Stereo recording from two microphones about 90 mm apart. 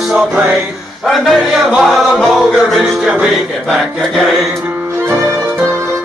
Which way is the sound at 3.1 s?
15° right (ahead or behind).